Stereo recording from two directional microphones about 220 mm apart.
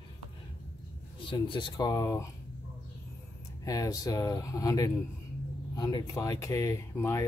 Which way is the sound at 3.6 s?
15° left (ahead or behind).